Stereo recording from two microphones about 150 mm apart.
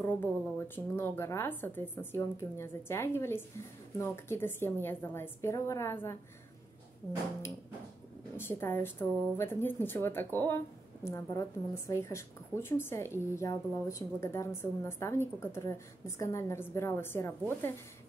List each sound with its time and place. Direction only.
0.0 s a woman's voice: 15° left (ahead or behind)
8.4 s a woman's voice: 15° left (ahead or behind)